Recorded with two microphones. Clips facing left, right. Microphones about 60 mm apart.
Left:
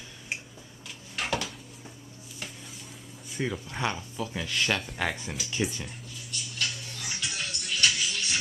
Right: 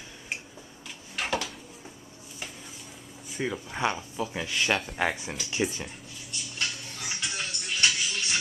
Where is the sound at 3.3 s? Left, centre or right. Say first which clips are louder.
Right 1 dB; centre.